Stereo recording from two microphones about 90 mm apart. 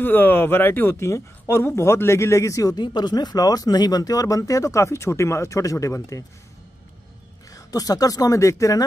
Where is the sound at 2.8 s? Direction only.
55° left (ahead or behind); by 6.2 s 35° left (ahead or behind).